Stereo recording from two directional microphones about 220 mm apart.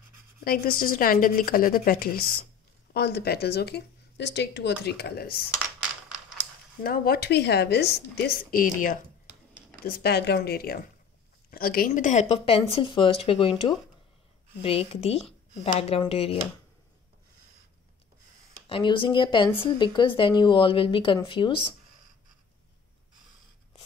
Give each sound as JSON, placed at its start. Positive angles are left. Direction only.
{"t": 0.4, "sound": "a woman's voice", "side_deg": 40}
{"t": 6.8, "sound": "speech", "side_deg": 45}
{"t": 18.7, "sound": "speech", "side_deg": 20}